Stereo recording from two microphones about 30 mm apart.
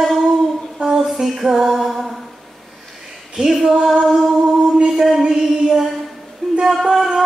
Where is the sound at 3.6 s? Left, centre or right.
Centre.